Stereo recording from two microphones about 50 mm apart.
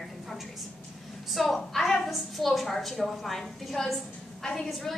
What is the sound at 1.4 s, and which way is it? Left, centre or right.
A woman's voice, centre.